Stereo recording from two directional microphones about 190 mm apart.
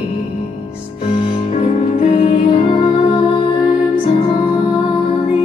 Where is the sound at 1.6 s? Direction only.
35° left (ahead or behind).